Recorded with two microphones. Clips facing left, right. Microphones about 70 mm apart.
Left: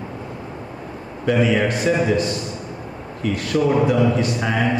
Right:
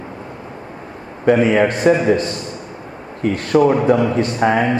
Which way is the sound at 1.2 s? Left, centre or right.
Right.